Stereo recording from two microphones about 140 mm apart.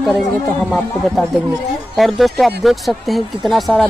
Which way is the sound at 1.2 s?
Centre (ahead or behind).